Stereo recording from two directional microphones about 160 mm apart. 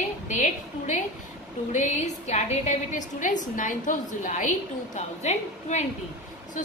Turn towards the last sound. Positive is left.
turn(degrees=45)  # may be behind; listen again after turning